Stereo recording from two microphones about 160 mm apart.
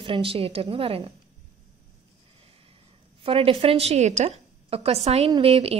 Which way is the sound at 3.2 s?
35° right (ahead or behind).